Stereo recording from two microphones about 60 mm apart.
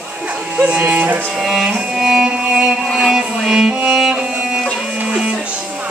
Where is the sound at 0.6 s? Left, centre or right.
Centre.